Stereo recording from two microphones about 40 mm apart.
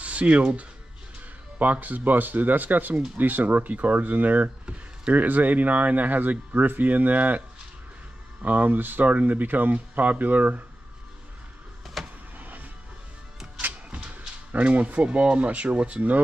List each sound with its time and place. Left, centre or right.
0.0 s a sound: right
1.6 s speech: right
12.0 s vehicle: centre
12.4 s music: right
13.8 s speech: right